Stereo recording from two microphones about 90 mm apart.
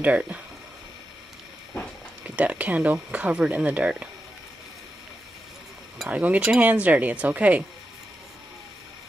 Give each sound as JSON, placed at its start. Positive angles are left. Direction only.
{"t": 0.0, "sound": "speech", "side_deg": -15}
{"t": 2.2, "sound": "speech", "side_deg": -15}
{"t": 6.0, "sound": "speech", "side_deg": -15}